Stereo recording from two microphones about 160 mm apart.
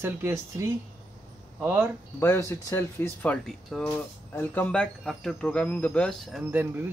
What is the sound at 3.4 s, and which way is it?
Speech, centre (ahead or behind).